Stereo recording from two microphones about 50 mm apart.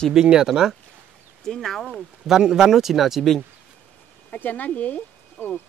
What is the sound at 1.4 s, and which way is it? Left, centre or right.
Speech, centre.